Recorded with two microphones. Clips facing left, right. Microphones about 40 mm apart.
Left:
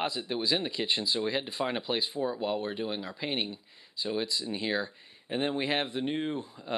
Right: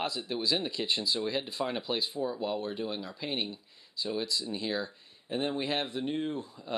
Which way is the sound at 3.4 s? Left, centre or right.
Left.